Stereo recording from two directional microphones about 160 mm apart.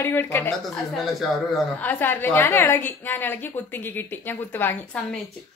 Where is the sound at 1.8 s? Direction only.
10° left (ahead or behind).